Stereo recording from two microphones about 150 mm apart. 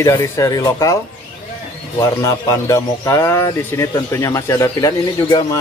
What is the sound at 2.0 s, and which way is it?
A man's voice, 20° left (ahead or behind).